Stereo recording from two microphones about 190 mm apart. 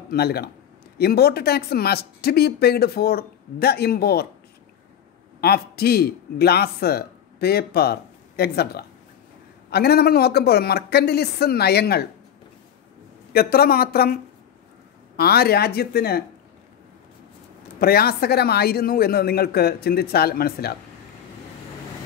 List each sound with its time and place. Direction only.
0.1 s speech: 55° left (ahead or behind)
5.4 s a man's voice: 55° left (ahead or behind)
13.3 s speech: 55° left (ahead or behind)
17.7 s speech: 55° left (ahead or behind)